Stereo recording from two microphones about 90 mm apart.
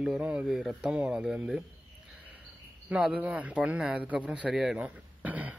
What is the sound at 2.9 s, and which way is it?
A man's voice, 15° right (ahead or behind).